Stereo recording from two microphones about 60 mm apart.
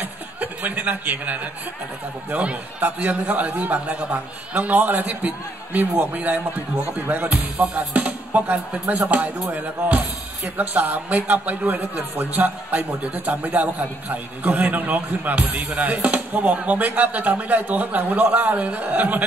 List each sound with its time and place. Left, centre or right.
0.0 s chuckle: right
2.3 s speech: right